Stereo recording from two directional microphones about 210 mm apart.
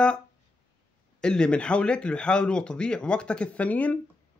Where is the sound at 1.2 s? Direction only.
5° left (ahead or behind).